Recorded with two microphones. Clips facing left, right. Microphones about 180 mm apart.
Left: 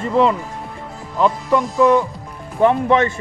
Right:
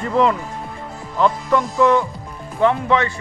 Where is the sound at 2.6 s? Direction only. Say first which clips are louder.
Left 2 dB; 15° left (ahead or behind).